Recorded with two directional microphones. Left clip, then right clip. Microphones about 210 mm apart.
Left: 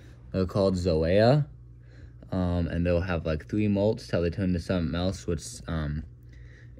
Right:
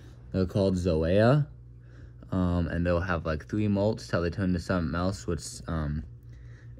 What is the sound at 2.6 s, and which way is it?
Speech, 5° right (ahead or behind).